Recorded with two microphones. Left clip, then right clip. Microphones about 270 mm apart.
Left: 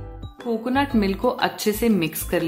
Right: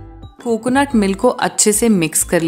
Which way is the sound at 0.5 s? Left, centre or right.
Right.